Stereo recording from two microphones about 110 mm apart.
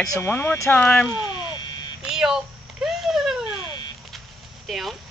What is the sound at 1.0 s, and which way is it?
Speech, 40° left (ahead or behind).